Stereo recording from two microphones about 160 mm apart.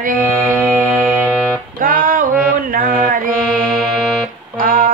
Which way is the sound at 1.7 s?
60° right (ahead or behind).